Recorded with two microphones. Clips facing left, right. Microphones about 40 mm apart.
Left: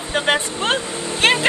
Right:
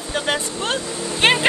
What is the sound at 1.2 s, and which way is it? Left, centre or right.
Vehicle, centre.